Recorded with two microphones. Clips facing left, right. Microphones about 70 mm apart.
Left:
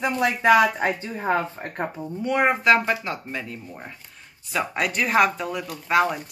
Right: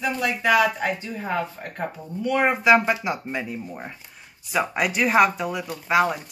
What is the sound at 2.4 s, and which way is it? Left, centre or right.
Speech, centre.